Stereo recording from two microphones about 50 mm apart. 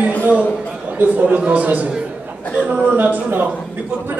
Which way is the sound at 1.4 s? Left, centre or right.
Right.